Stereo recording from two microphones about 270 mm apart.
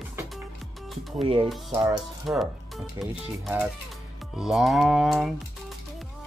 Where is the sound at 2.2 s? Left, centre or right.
Centre.